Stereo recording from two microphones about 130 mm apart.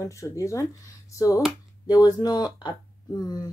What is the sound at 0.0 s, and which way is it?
Speech, 25° left (ahead or behind).